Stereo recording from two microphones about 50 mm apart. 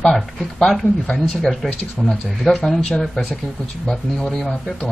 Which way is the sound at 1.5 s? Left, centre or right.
Centre.